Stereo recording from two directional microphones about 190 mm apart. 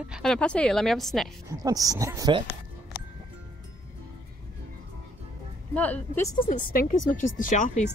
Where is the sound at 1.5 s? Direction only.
20° right (ahead or behind).